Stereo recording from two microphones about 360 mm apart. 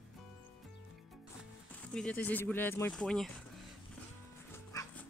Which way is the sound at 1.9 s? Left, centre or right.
Centre.